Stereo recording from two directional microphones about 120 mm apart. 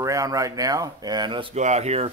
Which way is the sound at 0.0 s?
25° right (ahead or behind).